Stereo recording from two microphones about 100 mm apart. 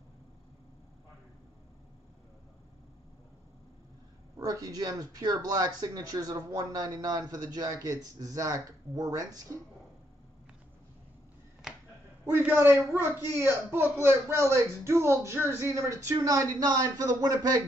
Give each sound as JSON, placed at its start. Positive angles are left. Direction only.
{"t": 4.4, "sound": "speech", "side_deg": -35}
{"t": 12.3, "sound": "speech", "side_deg": -25}